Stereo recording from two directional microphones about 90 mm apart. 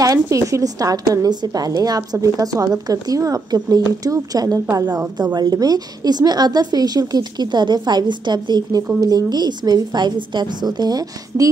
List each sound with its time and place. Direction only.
0.0 s a woman's voice: 35° right (ahead or behind)